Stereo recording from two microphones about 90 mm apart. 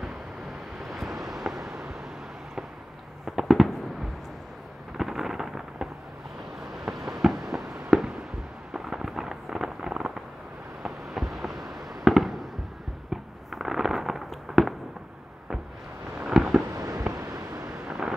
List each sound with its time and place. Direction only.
0.7 s vehicle: 5° right (ahead or behind)
3.3 s fireworks: centre (ahead or behind)
4.9 s fireworks: 5° right (ahead or behind)
16.3 s fireworks: 5° right (ahead or behind)
16.7 s a sound: 40° right (ahead or behind)
17.2 s vehicle: 35° right (ahead or behind)
17.8 s vehicle: 10° right (ahead or behind)